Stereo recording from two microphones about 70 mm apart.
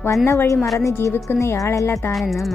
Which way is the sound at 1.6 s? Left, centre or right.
Left.